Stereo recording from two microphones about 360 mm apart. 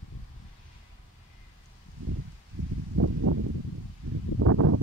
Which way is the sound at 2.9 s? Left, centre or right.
Right.